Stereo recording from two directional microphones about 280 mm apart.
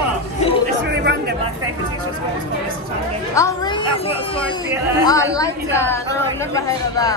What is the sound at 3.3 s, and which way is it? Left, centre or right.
A woman's voice, centre.